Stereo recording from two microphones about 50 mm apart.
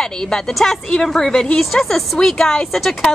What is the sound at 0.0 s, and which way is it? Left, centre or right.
A woman's voice, centre.